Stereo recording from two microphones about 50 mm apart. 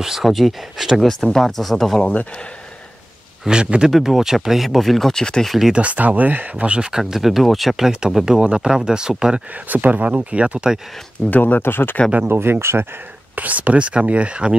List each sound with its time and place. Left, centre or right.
0.0 s speech: centre
1.0 s speech: centre
3.4 s speech: centre
5.8 s speech: right
6.8 s speech: centre
8.4 s speech: centre
9.7 s speech: right
11.2 s speech: left
12.3 s speech: right
13.4 s speech: right